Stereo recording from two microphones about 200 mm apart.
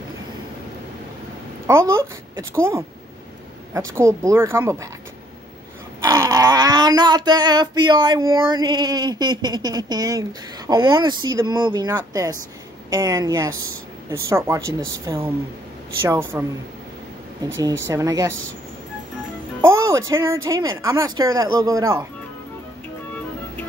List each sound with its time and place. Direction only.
1.7 s speech: 10° right (ahead or behind)
3.7 s speech: 15° right (ahead or behind)
5.9 s speech: 15° right (ahead or behind)
16.0 s speech: 10° right (ahead or behind)
17.8 s speech: 15° right (ahead or behind)
19.6 s music: 15° right (ahead or behind)
20.4 s speech: 20° right (ahead or behind)